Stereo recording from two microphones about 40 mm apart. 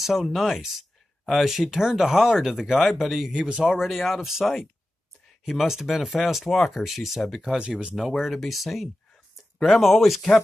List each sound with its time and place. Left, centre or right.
0.0 s speech: centre
3.3 s speech: right
3.6 s speech: centre